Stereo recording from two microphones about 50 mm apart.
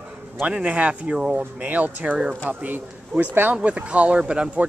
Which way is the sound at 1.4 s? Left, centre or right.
Right.